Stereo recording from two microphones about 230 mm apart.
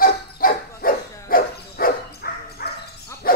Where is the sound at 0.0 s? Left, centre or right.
Left.